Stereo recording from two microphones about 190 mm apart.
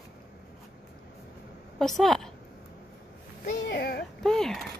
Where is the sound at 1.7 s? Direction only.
Centre (ahead or behind).